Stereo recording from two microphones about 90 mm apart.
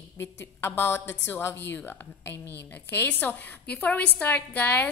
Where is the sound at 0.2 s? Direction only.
25° left (ahead or behind).